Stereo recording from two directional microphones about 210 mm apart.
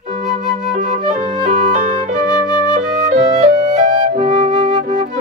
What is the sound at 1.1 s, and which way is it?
Music, 40° right (ahead or behind).